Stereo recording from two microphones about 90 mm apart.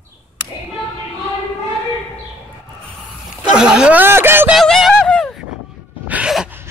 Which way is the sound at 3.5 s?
10° right (ahead or behind).